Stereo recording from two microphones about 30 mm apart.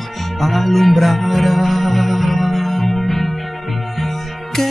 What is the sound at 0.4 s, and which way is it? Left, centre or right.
Music, centre.